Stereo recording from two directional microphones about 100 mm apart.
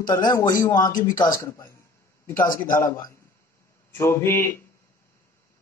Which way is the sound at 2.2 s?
20° left (ahead or behind).